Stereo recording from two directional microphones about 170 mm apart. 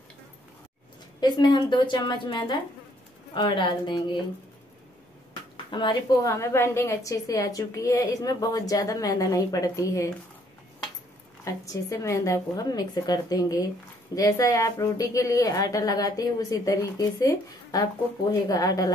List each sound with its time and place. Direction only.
1.2 s a woman's voice: 25° left (ahead or behind)
5.3 s a woman's voice: 25° left (ahead or behind)
11.4 s a woman's voice: 20° left (ahead or behind)